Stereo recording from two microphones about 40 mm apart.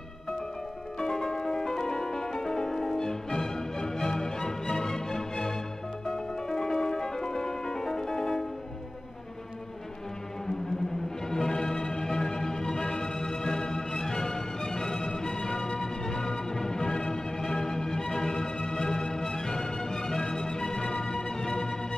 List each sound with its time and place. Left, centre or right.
0.9 s music: centre
11.2 s music: centre